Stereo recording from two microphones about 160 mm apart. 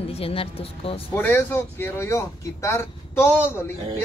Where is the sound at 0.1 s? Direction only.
35° left (ahead or behind).